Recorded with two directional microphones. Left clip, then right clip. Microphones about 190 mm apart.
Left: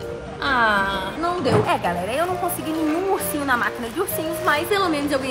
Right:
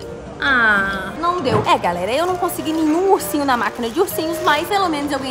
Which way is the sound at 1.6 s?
20° right (ahead or behind).